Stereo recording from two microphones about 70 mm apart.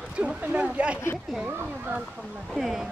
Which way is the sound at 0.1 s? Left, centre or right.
Centre.